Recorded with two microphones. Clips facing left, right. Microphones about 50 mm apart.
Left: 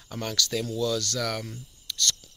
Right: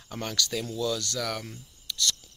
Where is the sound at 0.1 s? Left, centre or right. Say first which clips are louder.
Left 2 dB; centre.